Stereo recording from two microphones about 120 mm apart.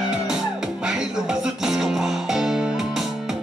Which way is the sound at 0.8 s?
5° right (ahead or behind).